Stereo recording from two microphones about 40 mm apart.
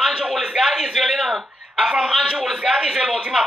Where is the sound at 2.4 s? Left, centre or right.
Centre.